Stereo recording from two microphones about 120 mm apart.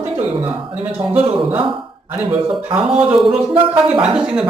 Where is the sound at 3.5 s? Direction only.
45° right (ahead or behind).